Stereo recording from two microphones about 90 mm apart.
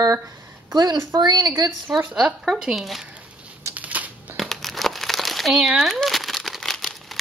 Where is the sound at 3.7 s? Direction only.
15° right (ahead or behind).